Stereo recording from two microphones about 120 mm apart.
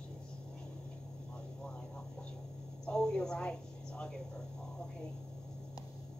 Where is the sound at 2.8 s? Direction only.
5° left (ahead or behind).